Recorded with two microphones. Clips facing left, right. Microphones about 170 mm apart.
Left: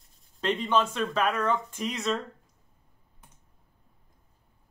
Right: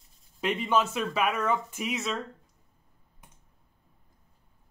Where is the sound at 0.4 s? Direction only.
10° right (ahead or behind).